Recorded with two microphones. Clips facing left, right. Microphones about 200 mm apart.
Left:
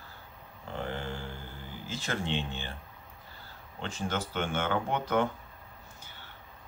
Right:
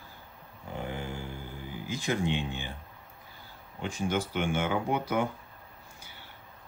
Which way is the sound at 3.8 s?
10° right (ahead or behind).